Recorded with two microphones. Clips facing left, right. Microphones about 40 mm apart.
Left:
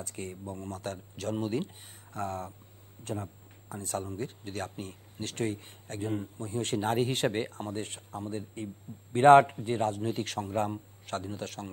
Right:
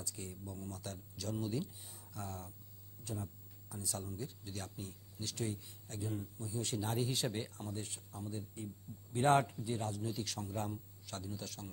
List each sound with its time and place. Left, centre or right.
0.0 s speech: left